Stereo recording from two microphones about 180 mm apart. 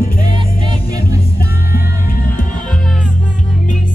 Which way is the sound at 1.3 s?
55° left (ahead or behind).